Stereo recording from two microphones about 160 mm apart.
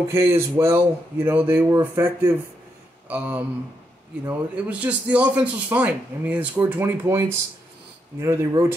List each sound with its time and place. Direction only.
0.1 s a man's voice: 15° right (ahead or behind)